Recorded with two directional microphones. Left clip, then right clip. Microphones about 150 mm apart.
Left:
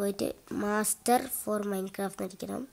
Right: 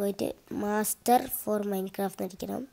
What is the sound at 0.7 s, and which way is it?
Speech, 15° right (ahead or behind).